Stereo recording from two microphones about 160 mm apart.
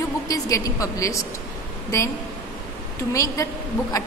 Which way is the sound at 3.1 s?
20° left (ahead or behind).